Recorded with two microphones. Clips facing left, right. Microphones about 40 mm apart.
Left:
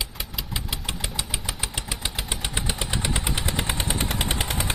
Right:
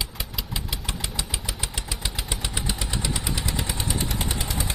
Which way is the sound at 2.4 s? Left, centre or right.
Left.